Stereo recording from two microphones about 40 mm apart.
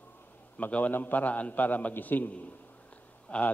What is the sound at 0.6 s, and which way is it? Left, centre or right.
A man's voice, left.